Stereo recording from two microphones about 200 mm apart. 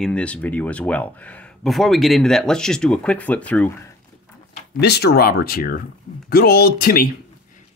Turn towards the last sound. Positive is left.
turn(degrees=45)  # may be behind; listen again after turning